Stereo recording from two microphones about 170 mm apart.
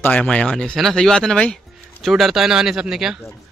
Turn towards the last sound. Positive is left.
turn(degrees=-5)  # may be behind; listen again after turning